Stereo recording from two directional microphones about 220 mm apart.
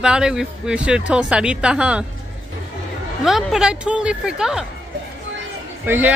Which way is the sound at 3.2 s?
Centre (ahead or behind).